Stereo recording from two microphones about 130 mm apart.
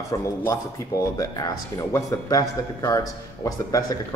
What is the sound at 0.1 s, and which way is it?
Speech, 35° left (ahead or behind).